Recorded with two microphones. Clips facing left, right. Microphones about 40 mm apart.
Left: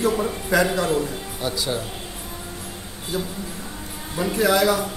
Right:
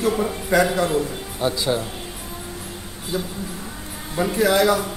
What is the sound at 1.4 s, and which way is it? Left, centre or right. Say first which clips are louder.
Speech: right 4 dB; centre.